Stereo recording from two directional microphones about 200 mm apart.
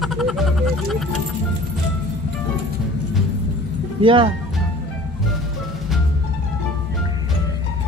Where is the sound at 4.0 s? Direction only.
25° right (ahead or behind).